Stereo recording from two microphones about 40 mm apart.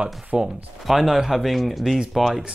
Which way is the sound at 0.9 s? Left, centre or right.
Centre.